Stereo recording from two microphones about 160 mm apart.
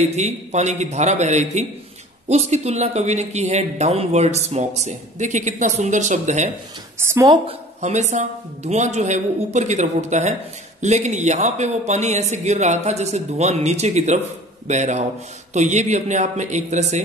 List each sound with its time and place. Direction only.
0.0 s speech: 45° right (ahead or behind)
7.0 s a woman's voice: 15° right (ahead or behind)
7.8 s speech: 45° right (ahead or behind)